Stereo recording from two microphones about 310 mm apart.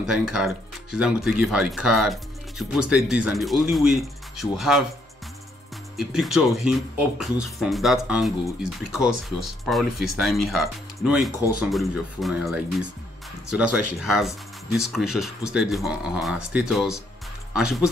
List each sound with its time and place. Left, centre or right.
0.0 s speech: centre
5.9 s speech: centre